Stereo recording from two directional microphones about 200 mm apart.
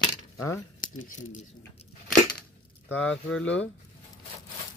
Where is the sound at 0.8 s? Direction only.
40° left (ahead or behind).